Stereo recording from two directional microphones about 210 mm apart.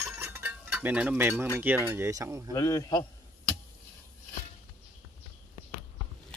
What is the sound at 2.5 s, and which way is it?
Speech, 15° left (ahead or behind).